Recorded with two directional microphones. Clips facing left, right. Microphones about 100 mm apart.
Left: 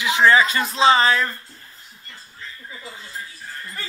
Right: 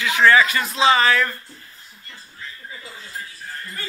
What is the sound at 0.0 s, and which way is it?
Speech, 20° left (ahead or behind).